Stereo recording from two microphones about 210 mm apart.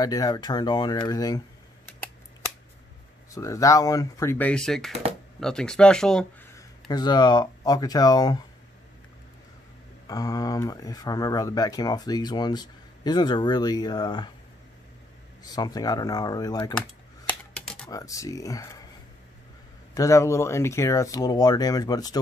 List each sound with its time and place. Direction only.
0.0 s speech: 15° left (ahead or behind)
3.3 s speech: 15° left (ahead or behind)
6.5 s speech: 20° left (ahead or behind)
10.0 s speech: 15° left (ahead or behind)
15.4 s speech: 20° left (ahead or behind)
17.3 s typewriter: 5° left (ahead or behind)
17.8 s speech: 15° left (ahead or behind)
19.9 s speech: 15° left (ahead or behind)